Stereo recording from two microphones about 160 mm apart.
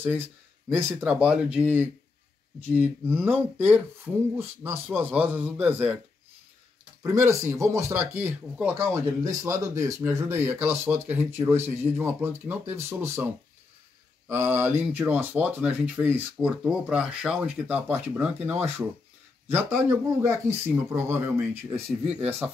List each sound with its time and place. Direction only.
0.7 s speech: 10° right (ahead or behind)
7.0 s speech: 20° right (ahead or behind)
21.7 s speech: 40° right (ahead or behind)
22.4 s speech: 5° right (ahead or behind)